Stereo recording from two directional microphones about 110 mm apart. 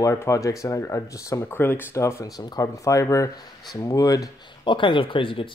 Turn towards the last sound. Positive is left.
turn(degrees=50)  # may be behind; listen again after turning